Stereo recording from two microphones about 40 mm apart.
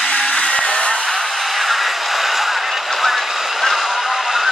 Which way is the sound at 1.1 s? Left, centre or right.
Centre.